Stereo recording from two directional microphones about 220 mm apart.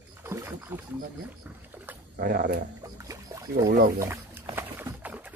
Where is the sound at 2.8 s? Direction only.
15° right (ahead or behind).